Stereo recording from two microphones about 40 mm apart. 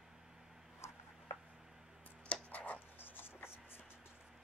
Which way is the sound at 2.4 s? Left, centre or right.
Left.